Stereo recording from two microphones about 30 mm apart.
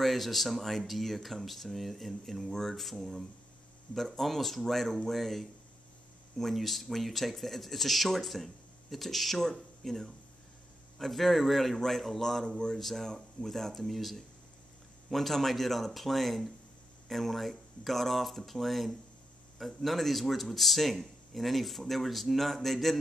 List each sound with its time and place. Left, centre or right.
0.0 s speech: centre
12.4 s speech: left
12.7 s speech: centre